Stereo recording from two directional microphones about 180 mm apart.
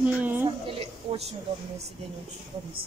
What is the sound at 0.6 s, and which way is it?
Speech, 30° right (ahead or behind).